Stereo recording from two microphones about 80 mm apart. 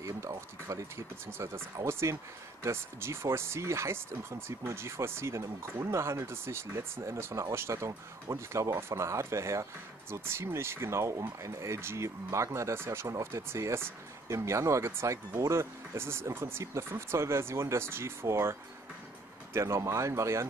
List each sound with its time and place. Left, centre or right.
0.0 s speech: right